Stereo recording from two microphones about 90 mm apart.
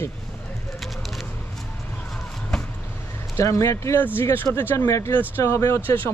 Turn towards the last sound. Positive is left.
turn(degrees=25)  # may be behind; listen again after turning